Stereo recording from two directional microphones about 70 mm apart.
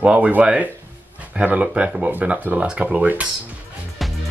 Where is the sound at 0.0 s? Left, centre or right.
Centre.